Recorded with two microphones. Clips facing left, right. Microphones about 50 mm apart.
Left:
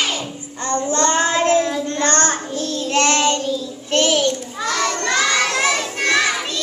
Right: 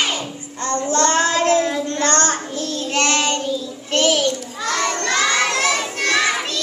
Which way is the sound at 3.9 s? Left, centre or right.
Left.